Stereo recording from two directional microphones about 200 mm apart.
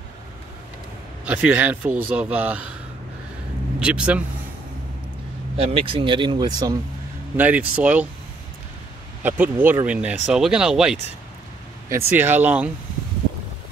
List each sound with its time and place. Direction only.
1.2 s a man's voice: 5° right (ahead or behind)
3.8 s speech: 5° right (ahead or behind)
5.6 s speech: 30° right (ahead or behind)
7.3 s a man's voice: 10° right (ahead or behind)
9.2 s a man's voice: 10° right (ahead or behind)